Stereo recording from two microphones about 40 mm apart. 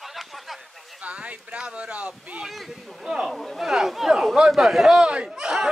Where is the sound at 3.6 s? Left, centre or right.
Centre.